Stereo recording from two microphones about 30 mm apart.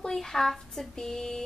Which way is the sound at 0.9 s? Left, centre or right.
Left.